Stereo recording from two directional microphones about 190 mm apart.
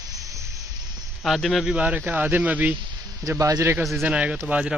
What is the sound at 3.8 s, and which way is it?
Speech, 5° right (ahead or behind).